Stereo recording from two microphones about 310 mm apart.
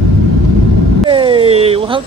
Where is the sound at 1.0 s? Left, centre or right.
Centre.